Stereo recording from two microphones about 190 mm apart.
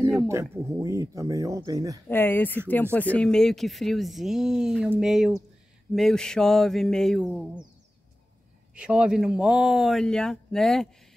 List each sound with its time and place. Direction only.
0.3 s speech: 15° right (ahead or behind)
2.0 s speech: 10° left (ahead or behind)
8.7 s speech: 5° right (ahead or behind)